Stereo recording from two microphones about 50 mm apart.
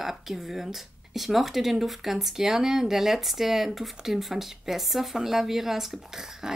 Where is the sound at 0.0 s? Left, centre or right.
Centre.